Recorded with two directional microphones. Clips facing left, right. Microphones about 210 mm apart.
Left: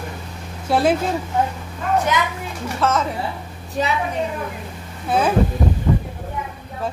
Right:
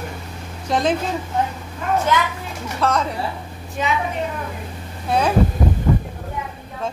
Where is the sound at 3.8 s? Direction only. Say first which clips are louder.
Left 1 dB; 35° left (ahead or behind).